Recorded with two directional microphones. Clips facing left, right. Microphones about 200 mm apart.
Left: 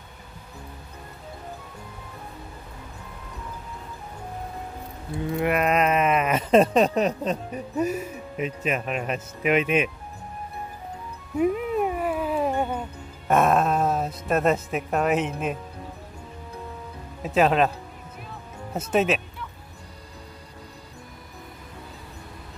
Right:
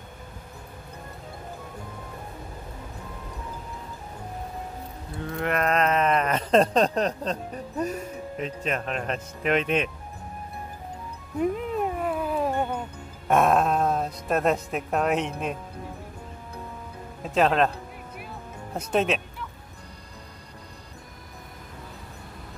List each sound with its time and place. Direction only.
5.4 s a sound: 10° left (ahead or behind)
11.3 s music: 5° left (ahead or behind)
13.3 s speech: centre (ahead or behind)
17.2 s speech: 5° left (ahead or behind)
18.8 s speech: 5° left (ahead or behind)